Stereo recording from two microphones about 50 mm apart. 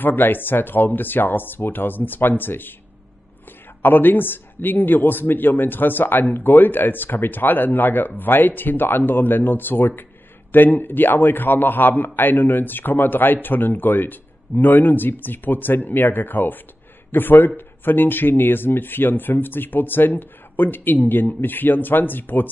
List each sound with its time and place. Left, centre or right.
0.0 s speech: left
3.8 s speech: left